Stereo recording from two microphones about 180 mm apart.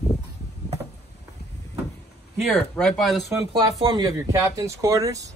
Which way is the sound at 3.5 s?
25° right (ahead or behind).